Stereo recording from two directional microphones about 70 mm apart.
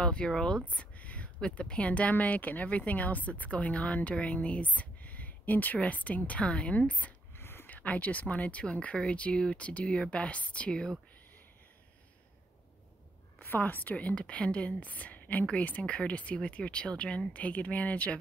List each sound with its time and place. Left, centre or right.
0.0 s speech: centre
7.3 s speech: left; by 11.0 s centre
13.4 s speech: left